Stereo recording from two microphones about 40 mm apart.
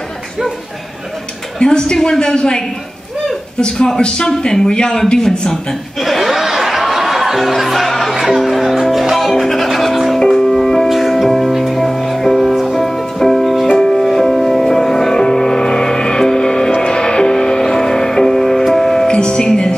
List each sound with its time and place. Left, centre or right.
1.6 s a woman's voice: centre
3.7 s a woman's voice: centre
5.9 s music: centre
8.1 s music: centre
10.9 s music: centre